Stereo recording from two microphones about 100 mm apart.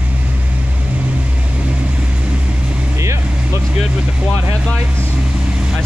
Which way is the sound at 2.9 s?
30° right (ahead or behind).